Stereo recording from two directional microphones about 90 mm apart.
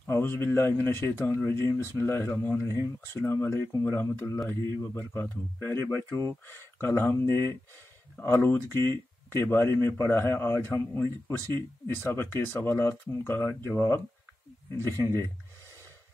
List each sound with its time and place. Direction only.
0.1 s speech: 25° left (ahead or behind)
2.7 s speech: 40° right (ahead or behind)
3.2 s speech: 25° left (ahead or behind)